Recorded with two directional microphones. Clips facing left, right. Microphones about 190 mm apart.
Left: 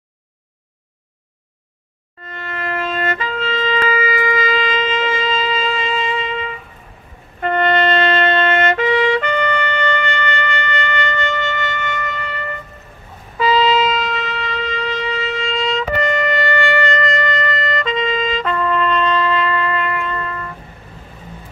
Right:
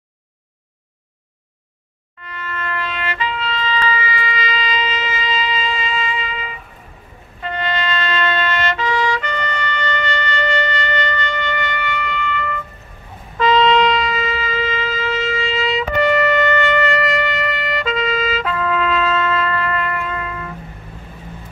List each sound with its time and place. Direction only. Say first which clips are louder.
2.2 s wind instrument: left 2 dB; 45° left (ahead or behind)
7.3 s trumpet: left 7 dB; 55° left (ahead or behind)
11.0 s shofar: left 1 dB; 50° left (ahead or behind)
13.4 s shofar: right 1 dB; 5° left (ahead or behind)